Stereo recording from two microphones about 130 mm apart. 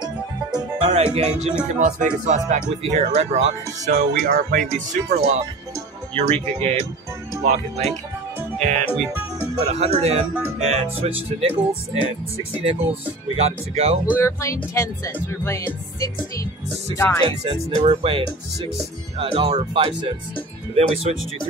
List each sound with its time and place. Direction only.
0.0 s music: 35° right (ahead or behind)
1.1 s speech: 60° right (ahead or behind)
1.8 s speech: 80° right
2.8 s speech: 55° right (ahead or behind); by 4.6 s 90° right
4.7 s speech: 60° right (ahead or behind)
8.5 s music: 60° right (ahead or behind)
9.6 s speech: 55° right (ahead or behind)
13.4 s speech: 55° right (ahead or behind)
14.0 s speech: 15° left (ahead or behind)
17.3 s speech: 40° right (ahead or behind)
17.7 s speech: 50° right (ahead or behind)
19.4 s speech: 50° right (ahead or behind)